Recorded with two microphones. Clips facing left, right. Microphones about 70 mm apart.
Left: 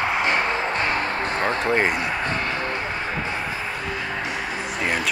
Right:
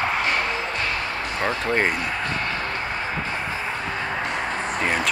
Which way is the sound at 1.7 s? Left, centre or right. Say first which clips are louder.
Left 1 dB; centre.